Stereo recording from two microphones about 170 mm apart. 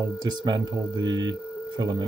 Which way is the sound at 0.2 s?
25° right (ahead or behind).